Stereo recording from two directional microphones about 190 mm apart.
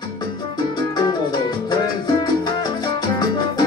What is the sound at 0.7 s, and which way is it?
Music, 20° left (ahead or behind).